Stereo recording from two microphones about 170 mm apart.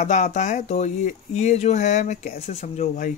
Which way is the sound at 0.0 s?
45° left (ahead or behind).